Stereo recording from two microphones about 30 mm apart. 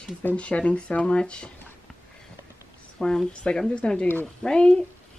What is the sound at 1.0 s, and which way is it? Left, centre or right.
Speech, left.